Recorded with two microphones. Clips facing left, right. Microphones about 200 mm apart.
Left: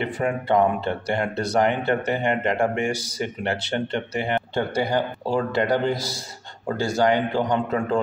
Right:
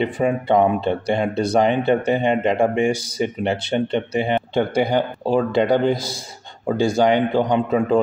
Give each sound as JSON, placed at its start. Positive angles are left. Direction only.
{"t": 0.0, "sound": "a man's voice", "side_deg": -20}